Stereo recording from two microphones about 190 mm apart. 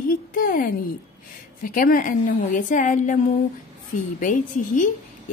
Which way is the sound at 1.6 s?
45° left (ahead or behind).